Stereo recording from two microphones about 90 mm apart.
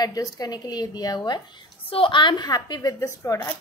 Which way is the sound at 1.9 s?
80° left.